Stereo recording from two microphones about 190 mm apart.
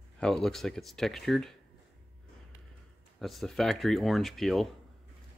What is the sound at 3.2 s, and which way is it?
Speech, centre (ahead or behind).